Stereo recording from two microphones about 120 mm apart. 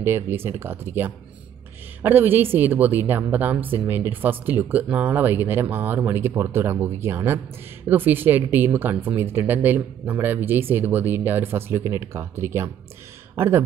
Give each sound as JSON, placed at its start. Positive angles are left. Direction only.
{"t": 0.0, "sound": "speech", "side_deg": -20}